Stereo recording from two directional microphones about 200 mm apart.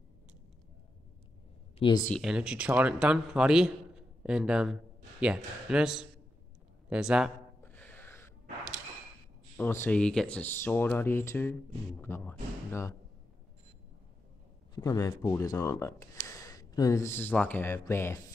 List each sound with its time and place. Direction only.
1.8 s speech: 25° left (ahead or behind)
2.1 s a man's voice: 5° right (ahead or behind)
7.6 s gasp: 10° left (ahead or behind)
9.6 s speech: 10° left (ahead or behind)
14.8 s speech: 15° left (ahead or behind)